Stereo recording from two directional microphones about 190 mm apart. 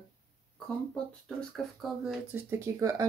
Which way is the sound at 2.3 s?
15° right (ahead or behind).